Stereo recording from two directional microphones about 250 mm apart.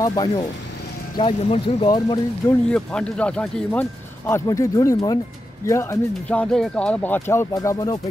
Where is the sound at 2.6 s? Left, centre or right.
Centre.